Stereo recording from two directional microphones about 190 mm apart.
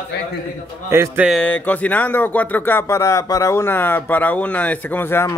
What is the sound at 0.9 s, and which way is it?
Speech, 15° right (ahead or behind).